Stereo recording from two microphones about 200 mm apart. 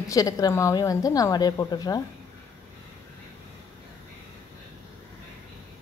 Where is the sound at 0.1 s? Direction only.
15° left (ahead or behind).